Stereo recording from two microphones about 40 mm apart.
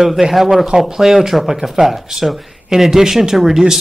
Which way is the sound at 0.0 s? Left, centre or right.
Centre.